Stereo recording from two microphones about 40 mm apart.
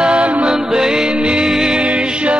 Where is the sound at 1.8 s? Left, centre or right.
Right.